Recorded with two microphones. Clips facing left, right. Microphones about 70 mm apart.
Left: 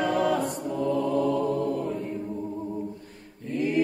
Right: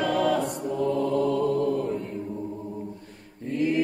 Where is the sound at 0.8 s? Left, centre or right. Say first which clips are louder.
Right 1 dB; centre.